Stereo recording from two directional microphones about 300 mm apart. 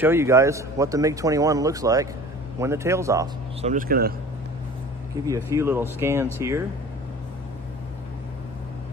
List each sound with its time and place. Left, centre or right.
0.0 s speech: centre
3.6 s speech: right
5.2 s speech: centre